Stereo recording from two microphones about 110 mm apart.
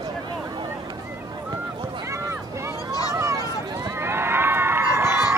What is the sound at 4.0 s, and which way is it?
Run, 20° right (ahead or behind).